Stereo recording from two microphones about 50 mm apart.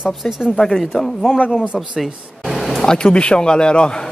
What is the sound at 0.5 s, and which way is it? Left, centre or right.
Speech, centre.